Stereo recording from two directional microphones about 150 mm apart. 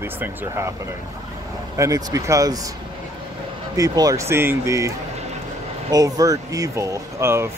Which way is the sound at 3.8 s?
25° right (ahead or behind).